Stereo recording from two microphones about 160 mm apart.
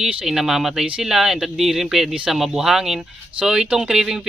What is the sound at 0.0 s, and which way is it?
Speech, 5° right (ahead or behind).